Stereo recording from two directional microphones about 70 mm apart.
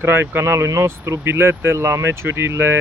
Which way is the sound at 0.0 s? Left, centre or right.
Right.